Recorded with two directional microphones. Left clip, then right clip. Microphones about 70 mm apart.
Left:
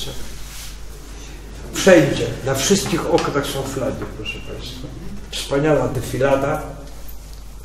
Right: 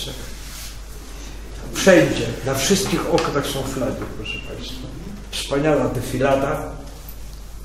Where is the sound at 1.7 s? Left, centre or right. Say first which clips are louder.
Left 1 dB; centre.